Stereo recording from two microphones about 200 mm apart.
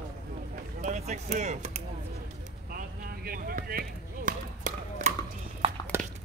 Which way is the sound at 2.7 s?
50° right (ahead or behind).